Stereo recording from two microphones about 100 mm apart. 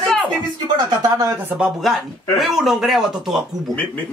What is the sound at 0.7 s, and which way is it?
Speech, 45° right (ahead or behind).